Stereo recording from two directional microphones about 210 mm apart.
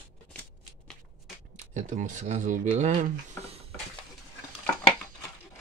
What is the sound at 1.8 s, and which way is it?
Speech, 35° right (ahead or behind).